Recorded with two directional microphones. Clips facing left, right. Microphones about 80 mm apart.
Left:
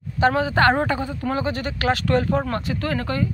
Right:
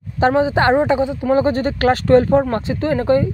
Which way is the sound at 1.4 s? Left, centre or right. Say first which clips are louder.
Right 7 dB; right.